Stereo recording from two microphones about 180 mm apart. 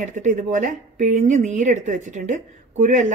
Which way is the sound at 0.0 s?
45° right (ahead or behind).